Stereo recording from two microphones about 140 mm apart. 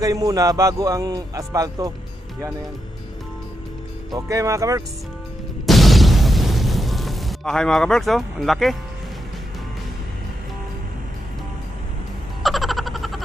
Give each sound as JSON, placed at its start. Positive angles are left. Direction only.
{"t": 0.0, "sound": "a man's voice", "side_deg": -25}
{"t": 4.1, "sound": "a man's voice", "side_deg": -25}
{"t": 5.7, "sound": "explosion", "side_deg": 0}
{"t": 12.4, "sound": "a sound", "side_deg": 0}